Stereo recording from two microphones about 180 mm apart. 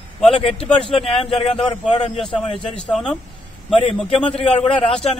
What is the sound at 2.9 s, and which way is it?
Speech, 5° left (ahead or behind).